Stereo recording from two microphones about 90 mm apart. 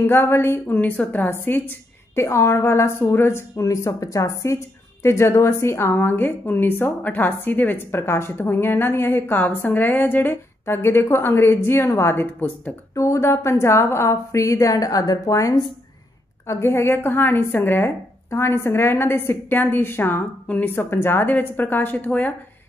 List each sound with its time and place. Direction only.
0.0 s a woman's voice: 25° left (ahead or behind)
12.9 s a woman's voice: 35° left (ahead or behind); by 22.3 s 20° left (ahead or behind)